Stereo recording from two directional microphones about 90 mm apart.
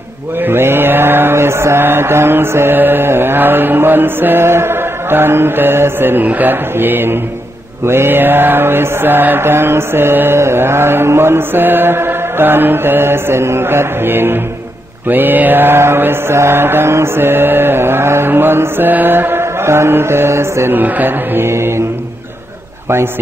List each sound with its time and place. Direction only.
0.4 s mantra: 25° right (ahead or behind)